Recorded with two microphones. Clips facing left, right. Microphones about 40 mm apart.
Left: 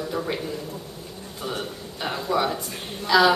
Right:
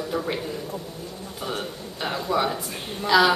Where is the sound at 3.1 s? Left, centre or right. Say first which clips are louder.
Even; centre.